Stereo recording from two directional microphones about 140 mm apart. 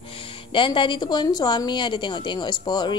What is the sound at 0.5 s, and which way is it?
A woman's voice, 35° left (ahead or behind).